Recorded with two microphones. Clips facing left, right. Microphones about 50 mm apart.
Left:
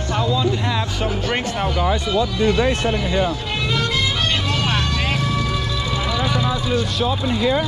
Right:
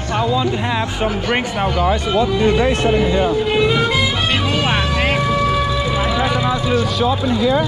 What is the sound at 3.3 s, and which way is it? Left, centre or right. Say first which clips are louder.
Music: right 8 dB; centre.